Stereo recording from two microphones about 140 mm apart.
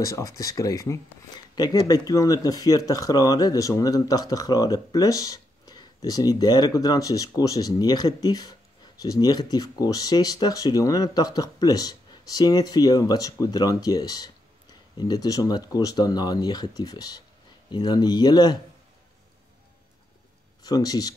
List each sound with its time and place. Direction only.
0.0 s speech: 25° left (ahead or behind)
20.6 s speech: 25° left (ahead or behind)